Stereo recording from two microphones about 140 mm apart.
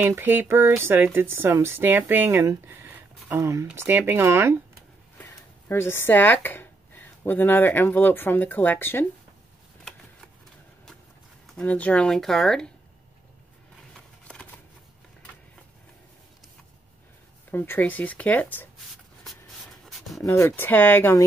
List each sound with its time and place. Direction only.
0.0 s speech: 15° right (ahead or behind)
5.1 s speech: 15° left (ahead or behind)
11.4 s speech: 5° left (ahead or behind)
13.9 s a sound: 5° left (ahead or behind)
17.5 s speech: 15° left (ahead or behind)
19.9 s pant: centre (ahead or behind)
20.2 s speech: 15° left (ahead or behind)